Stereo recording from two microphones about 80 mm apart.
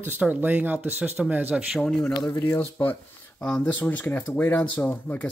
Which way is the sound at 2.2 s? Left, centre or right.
Left.